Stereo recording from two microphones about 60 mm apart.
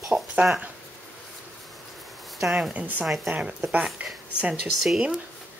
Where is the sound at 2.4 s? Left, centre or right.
Centre.